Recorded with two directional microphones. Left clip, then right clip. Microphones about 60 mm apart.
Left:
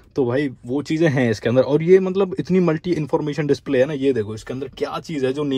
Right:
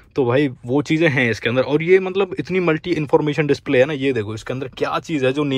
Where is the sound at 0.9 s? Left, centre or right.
Left.